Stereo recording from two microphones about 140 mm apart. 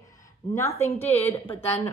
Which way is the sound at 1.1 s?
50° left (ahead or behind).